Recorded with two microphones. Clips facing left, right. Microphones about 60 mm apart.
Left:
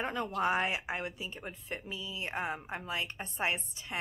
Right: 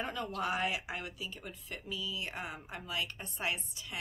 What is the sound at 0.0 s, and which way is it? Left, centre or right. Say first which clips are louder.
Speech: left 4 dB; left.